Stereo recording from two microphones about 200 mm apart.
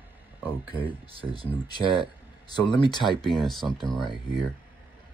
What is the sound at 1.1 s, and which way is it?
Speech, 25° right (ahead or behind).